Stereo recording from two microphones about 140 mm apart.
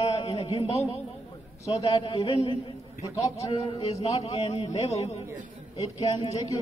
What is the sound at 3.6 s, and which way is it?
A man's voice, 45° left (ahead or behind).